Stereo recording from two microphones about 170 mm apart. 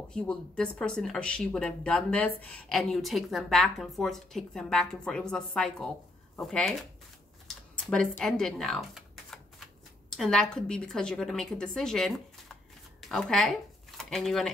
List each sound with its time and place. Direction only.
0.1 s speech: 5° left (ahead or behind)
7.4 s computer keyboard: 5° left (ahead or behind)
10.1 s speech: centre (ahead or behind)